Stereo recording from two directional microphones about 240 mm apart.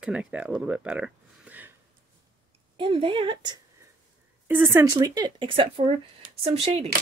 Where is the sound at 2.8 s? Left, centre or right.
Right.